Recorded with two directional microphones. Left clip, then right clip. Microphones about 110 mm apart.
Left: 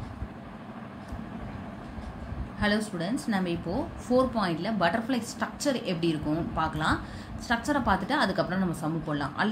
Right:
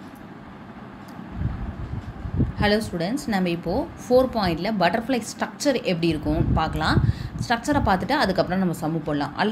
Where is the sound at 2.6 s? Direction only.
35° right (ahead or behind).